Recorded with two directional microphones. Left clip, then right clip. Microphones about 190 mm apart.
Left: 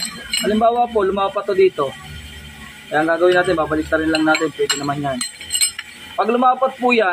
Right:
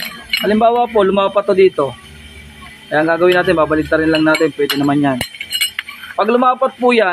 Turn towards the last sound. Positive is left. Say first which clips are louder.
# right 3 dB
turn(degrees=-25)  # may be behind; listen again after turning